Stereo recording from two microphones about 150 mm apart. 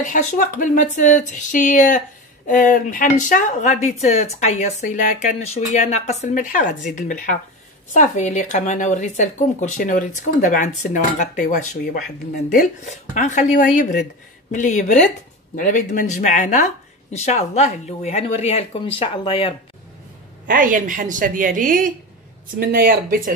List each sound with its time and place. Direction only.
0.0 s speech: 55° left (ahead or behind)
5.4 s speech: 45° left (ahead or behind); by 12.6 s 65° left (ahead or behind)
12.9 s speech: 50° left (ahead or behind)
15.5 s speech: 65° left (ahead or behind); by 19.5 s 35° left (ahead or behind)
20.4 s a woman's voice: 65° right (ahead or behind)
22.6 s speech: 85° right